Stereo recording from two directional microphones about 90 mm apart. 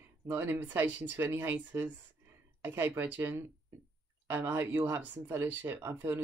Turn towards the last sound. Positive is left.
turn(degrees=-25)  # may be behind; listen again after turning